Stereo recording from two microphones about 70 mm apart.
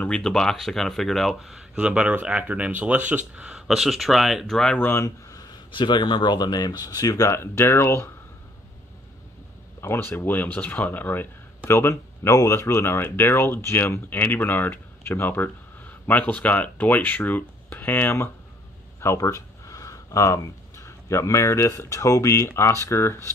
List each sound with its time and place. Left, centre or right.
0.1 s speech: centre
1.8 s speech: centre
3.5 s speech: centre
5.5 s speech: left
9.8 s speech: left
19.1 s speech: left